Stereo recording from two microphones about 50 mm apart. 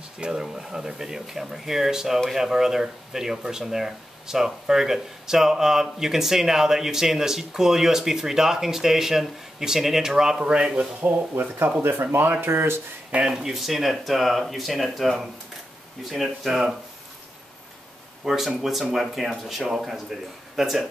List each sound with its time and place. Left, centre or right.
0.2 s speech: centre
11.0 s speech: right
13.2 s speech: centre
18.2 s speech: centre